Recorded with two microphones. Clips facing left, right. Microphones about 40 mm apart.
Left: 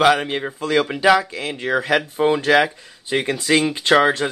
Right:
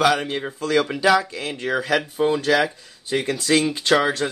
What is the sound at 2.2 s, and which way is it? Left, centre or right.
Speech, left.